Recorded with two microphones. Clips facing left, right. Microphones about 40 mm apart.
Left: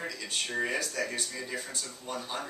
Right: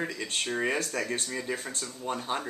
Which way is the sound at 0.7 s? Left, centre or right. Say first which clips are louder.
Right 2 dB; right.